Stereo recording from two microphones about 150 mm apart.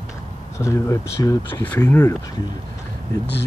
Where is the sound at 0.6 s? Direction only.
20° left (ahead or behind).